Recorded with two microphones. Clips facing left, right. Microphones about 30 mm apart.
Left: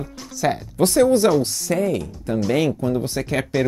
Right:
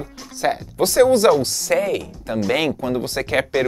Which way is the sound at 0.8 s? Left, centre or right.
Right.